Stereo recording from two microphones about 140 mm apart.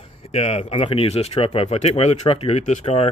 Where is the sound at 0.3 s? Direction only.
50° left (ahead or behind).